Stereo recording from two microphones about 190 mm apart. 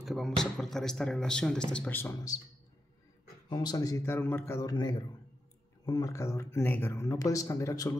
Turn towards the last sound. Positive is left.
turn(degrees=15)  # may be behind; listen again after turning